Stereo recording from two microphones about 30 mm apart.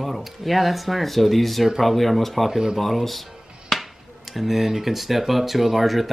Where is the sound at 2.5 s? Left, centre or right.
Centre.